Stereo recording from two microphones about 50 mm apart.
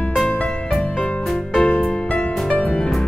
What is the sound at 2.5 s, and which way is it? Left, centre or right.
Music, left.